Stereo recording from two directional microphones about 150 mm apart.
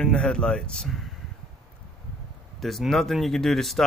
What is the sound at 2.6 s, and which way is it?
Speech, centre (ahead or behind).